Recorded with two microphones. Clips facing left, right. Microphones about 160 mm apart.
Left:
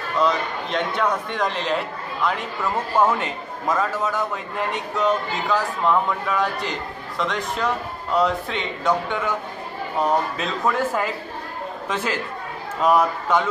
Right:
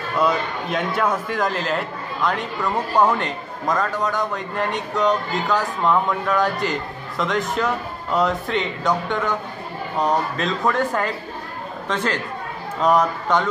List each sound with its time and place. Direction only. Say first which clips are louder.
0.2 s a man's voice: right 1 dB; 5° right (ahead or behind)